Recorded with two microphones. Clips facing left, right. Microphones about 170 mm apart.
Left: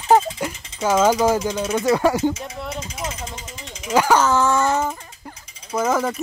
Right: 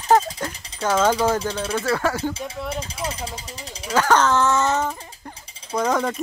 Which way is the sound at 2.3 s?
30° right (ahead or behind).